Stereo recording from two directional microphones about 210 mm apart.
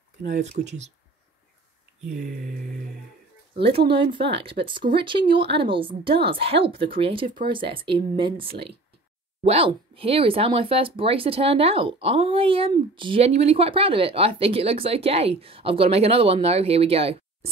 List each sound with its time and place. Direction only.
0.3 s speech: 35° right (ahead or behind)
3.5 s speech: 25° right (ahead or behind)